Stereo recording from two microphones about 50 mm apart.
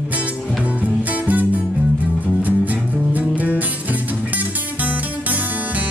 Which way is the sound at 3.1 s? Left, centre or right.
Right.